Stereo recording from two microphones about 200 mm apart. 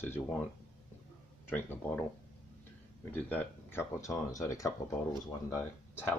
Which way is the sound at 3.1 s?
10° left (ahead or behind).